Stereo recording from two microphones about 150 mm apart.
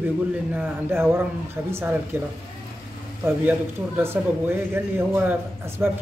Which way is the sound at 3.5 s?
15° right (ahead or behind).